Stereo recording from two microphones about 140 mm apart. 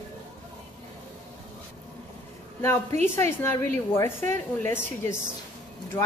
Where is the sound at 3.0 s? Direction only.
15° left (ahead or behind).